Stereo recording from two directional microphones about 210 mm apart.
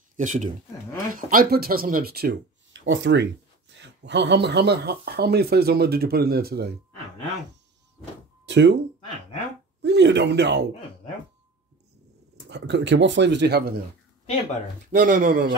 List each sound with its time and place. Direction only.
0.1 s speech: 35° right (ahead or behind)
8.5 s speech: 55° right (ahead or behind)
9.8 s speech: 55° right (ahead or behind)
12.4 s speech: 55° right (ahead or behind)
14.9 s speech: 40° right (ahead or behind)